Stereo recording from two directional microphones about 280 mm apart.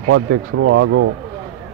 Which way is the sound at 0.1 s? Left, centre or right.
Right.